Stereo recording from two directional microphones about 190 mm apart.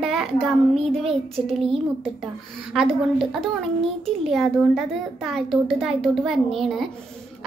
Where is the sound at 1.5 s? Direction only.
30° right (ahead or behind).